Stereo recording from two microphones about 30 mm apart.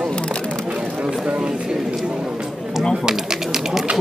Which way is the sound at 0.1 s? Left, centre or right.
Left.